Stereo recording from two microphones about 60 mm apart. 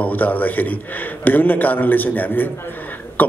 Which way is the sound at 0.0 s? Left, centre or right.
Left.